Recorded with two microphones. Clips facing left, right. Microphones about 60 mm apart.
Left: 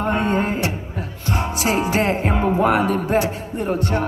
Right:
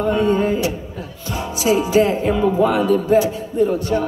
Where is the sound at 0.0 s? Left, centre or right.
Left.